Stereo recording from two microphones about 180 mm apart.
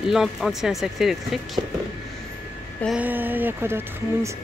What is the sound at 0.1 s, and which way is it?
Speech, centre (ahead or behind).